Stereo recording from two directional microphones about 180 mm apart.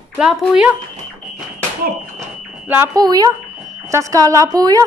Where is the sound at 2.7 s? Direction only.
15° right (ahead or behind).